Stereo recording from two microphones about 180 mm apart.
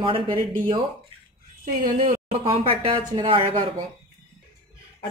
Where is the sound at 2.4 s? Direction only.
30° right (ahead or behind).